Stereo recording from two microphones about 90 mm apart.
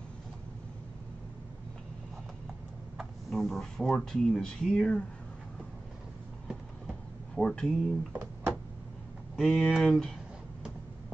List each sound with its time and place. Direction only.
3.3 s speech: 5° left (ahead or behind)
7.3 s speech: 5° left (ahead or behind)
8.1 s a sound: 20° right (ahead or behind)
9.4 s speech: centre (ahead or behind)